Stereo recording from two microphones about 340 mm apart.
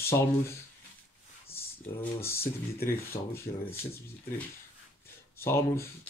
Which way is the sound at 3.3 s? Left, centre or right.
Centre.